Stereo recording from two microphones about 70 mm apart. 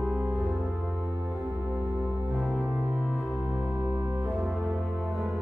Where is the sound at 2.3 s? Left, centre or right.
Centre.